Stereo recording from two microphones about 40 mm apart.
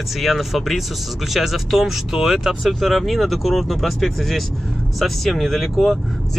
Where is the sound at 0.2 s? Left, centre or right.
Centre.